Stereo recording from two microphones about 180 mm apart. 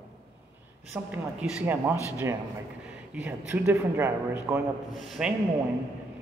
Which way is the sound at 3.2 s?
10° right (ahead or behind).